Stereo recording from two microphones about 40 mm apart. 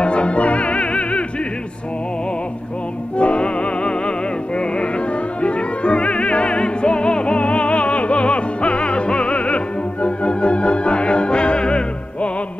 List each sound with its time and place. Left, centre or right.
0.0 s opera: left
3.2 s music: left
5.4 s opera: left
10.0 s music: left